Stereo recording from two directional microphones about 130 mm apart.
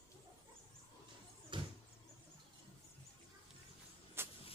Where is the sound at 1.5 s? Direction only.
40° right (ahead or behind).